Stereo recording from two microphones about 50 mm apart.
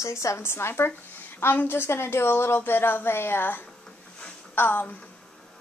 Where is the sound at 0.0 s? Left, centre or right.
Left.